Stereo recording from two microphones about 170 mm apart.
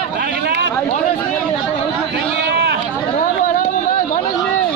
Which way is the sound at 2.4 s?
80° right.